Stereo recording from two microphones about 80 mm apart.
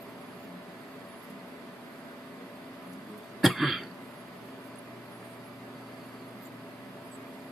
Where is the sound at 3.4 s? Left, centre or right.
Centre.